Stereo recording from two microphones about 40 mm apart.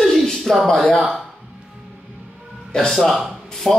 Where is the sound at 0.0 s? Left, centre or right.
Centre.